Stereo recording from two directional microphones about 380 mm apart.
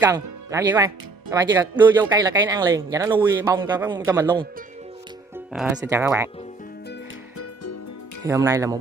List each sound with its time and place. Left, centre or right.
0.5 s speech: centre
5.5 s speech: centre
8.3 s speech: centre